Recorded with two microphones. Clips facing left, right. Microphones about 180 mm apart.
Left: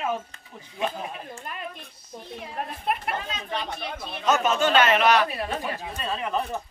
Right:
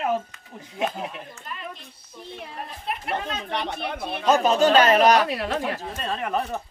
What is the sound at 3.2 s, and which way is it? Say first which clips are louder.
Speech: right 3 dB; 65° right (ahead or behind).